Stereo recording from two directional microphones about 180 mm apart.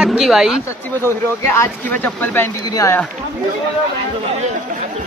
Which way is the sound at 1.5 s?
10° left (ahead or behind).